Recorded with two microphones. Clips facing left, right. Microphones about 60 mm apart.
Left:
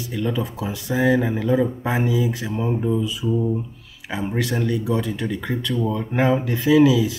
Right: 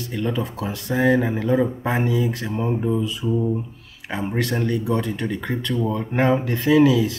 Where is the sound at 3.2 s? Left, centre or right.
Right.